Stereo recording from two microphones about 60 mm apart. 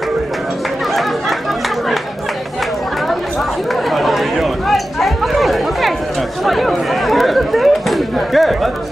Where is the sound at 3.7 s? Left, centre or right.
Centre.